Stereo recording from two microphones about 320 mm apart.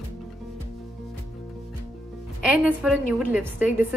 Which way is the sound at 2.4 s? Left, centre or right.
Centre.